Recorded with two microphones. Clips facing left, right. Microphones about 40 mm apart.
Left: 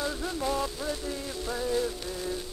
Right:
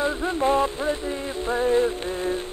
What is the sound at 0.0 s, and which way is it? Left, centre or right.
Music, right.